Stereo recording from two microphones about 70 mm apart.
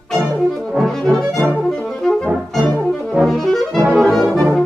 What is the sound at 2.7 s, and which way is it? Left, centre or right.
Brass instrument, centre.